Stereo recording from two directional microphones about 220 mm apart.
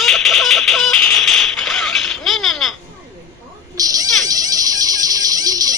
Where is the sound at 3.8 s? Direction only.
15° right (ahead or behind).